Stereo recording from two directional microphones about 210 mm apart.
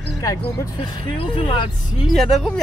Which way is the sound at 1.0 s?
25° left (ahead or behind).